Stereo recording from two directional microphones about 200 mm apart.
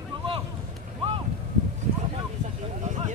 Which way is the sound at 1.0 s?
25° right (ahead or behind).